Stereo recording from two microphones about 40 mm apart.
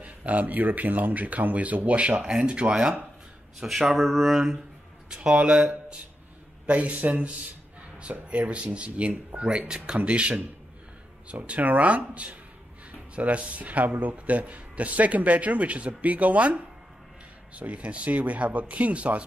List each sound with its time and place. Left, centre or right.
0.0 s speech: right
2.0 s speech: right
3.5 s speech: centre
5.1 s speech: right
11.4 s speech: right